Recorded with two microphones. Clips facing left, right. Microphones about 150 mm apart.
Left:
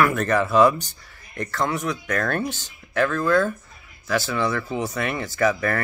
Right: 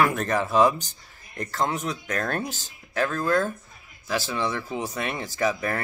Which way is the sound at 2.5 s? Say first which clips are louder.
Left 4 dB; 35° right (ahead or behind).